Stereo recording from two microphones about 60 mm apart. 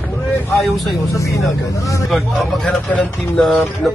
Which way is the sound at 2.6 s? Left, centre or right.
Left.